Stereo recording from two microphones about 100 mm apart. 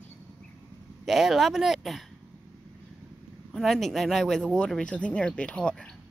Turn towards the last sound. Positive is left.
turn(degrees=10)  # may be behind; listen again after turning